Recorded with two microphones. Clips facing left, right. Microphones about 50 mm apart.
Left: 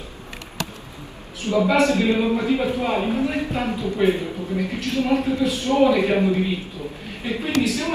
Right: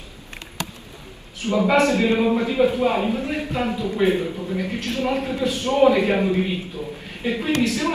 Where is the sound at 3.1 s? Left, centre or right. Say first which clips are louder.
Left 2 dB; left.